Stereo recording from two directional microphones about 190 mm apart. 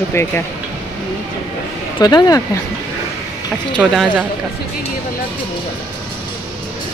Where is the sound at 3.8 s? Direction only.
5° right (ahead or behind).